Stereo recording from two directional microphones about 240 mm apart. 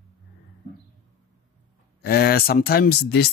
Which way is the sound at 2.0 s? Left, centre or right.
Left.